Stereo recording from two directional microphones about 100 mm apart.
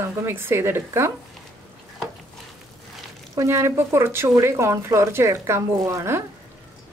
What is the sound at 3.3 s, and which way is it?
A woman's voice, 30° right (ahead or behind).